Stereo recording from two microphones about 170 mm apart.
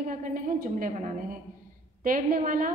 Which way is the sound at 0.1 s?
55° right (ahead or behind).